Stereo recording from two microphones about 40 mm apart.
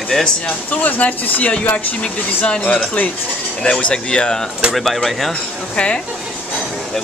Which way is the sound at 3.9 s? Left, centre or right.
Left.